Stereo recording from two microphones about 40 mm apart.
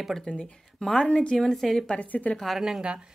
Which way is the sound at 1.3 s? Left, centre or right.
Centre.